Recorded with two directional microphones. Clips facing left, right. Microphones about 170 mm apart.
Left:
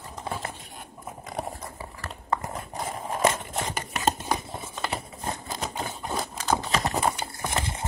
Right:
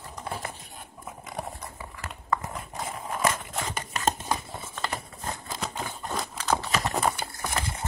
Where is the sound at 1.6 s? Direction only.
30° left (ahead or behind).